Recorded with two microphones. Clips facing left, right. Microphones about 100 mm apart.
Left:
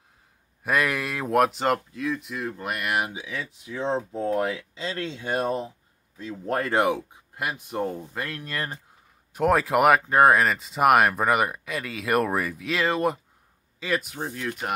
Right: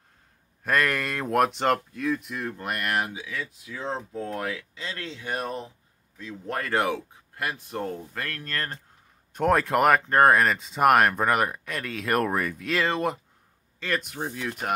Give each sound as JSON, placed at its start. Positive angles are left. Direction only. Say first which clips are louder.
{"t": 0.7, "sound": "speech", "louder": "even", "side_deg": 5}
{"t": 3.1, "sound": "speech", "louder": "left 1 dB", "side_deg": 20}
{"t": 6.7, "sound": "speech", "louder": "left 1 dB", "side_deg": 15}